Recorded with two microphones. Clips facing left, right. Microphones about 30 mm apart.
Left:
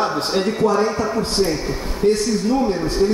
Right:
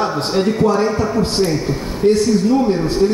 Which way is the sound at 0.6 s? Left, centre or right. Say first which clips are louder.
Right 2 dB; centre.